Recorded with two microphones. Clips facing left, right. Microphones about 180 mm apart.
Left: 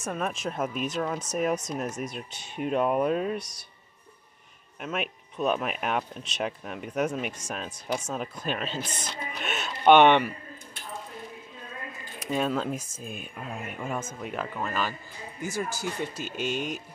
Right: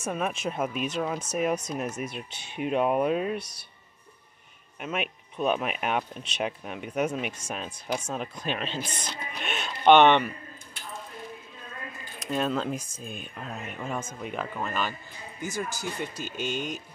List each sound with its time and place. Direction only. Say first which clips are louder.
0.0 s speech: right 1 dB; 5° right (ahead or behind)
4.7 s speech: even; centre (ahead or behind)
12.2 s speech: even; 5° left (ahead or behind)